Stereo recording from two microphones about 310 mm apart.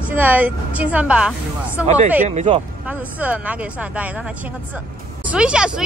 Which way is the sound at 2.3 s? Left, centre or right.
Right.